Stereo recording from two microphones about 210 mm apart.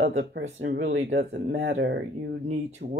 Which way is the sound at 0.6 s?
65° right (ahead or behind).